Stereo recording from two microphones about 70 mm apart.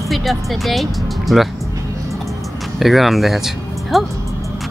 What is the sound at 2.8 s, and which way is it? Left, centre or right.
Speech, centre.